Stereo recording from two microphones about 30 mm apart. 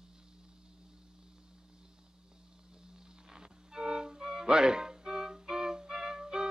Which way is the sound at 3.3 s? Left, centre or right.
Right.